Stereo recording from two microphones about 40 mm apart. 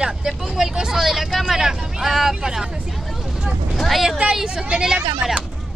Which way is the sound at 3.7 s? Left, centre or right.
Centre.